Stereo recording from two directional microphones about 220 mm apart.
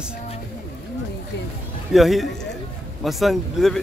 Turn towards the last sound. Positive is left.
turn(degrees=0)  # may be behind; listen again after turning